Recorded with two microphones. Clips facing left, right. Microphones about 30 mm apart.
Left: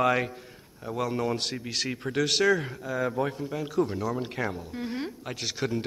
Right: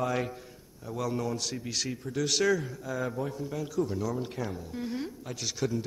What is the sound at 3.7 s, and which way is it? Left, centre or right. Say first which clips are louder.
Speech: left 3 dB; left.